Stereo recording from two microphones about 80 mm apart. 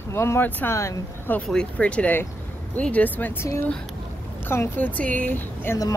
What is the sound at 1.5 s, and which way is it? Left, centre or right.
Speech, centre.